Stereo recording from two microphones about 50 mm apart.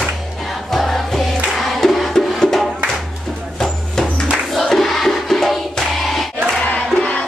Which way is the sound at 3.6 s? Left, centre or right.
Centre.